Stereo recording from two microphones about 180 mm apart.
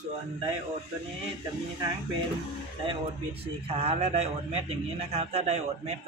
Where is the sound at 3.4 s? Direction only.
35° right (ahead or behind).